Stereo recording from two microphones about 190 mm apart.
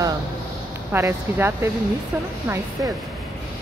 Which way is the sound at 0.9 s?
10° right (ahead or behind).